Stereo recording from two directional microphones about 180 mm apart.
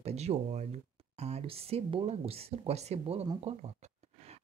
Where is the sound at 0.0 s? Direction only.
35° right (ahead or behind).